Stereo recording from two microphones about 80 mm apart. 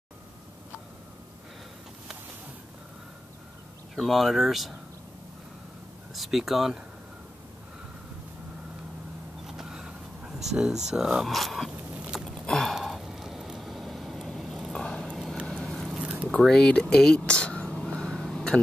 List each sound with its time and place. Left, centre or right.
3.9 s speech: centre
6.1 s speech: centre
9.5 s a sound: centre
14.7 s clip-clop: centre
15.4 s vehicle: centre
16.0 s a sound: centre
16.3 s speech: centre
17.6 s a sound: centre
18.3 s vehicle: centre